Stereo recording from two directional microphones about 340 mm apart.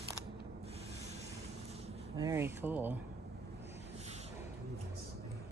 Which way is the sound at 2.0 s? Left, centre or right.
Centre.